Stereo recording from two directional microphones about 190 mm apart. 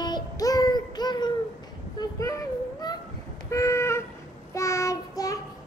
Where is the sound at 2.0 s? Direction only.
20° left (ahead or behind).